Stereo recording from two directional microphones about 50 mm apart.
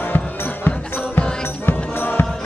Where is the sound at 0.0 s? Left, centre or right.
Left.